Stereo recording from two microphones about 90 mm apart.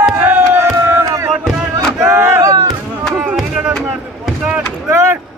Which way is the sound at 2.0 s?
30° right (ahead or behind).